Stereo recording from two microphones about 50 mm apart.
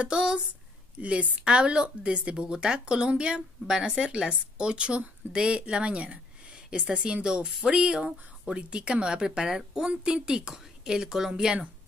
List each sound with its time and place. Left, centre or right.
0.9 s speech: right
7.4 s speech: centre
7.7 s speech: centre